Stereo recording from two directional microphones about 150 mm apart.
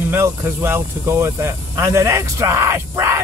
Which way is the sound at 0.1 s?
20° right (ahead or behind).